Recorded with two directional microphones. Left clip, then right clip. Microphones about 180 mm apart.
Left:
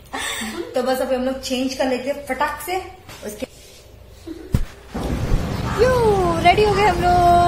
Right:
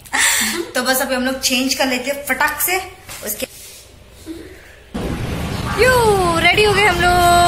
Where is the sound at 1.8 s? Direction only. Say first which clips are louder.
Even; 15° left (ahead or behind).